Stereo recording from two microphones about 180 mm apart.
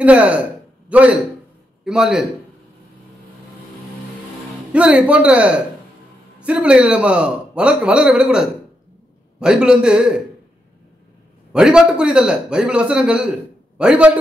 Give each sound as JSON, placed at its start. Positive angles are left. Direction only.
{"t": 0.0, "sound": "a man's voice", "side_deg": -5}
{"t": 4.7, "sound": "a man's voice", "side_deg": -5}
{"t": 11.5, "sound": "a man's voice", "side_deg": -5}